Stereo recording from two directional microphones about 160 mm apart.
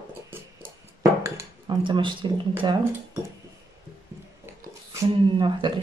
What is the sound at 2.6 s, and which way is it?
Speech, 30° right (ahead or behind).